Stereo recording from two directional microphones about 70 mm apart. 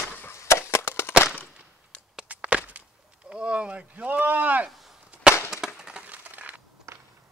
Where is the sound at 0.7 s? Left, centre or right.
Left.